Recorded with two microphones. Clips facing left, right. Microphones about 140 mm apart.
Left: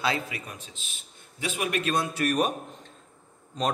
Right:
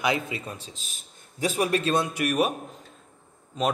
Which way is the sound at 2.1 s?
10° right (ahead or behind).